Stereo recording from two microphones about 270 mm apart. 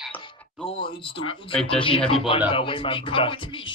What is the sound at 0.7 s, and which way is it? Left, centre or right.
Speech, centre.